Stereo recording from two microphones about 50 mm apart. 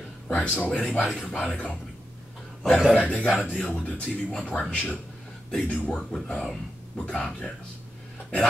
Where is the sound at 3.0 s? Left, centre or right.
Left.